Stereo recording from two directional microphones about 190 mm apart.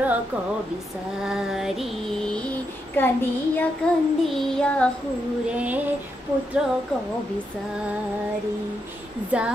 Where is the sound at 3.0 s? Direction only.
10° left (ahead or behind).